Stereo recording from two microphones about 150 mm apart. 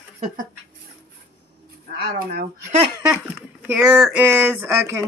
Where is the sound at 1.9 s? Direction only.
90° right.